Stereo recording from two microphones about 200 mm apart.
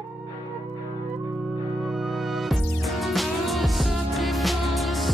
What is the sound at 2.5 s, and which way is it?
Music, centre (ahead or behind).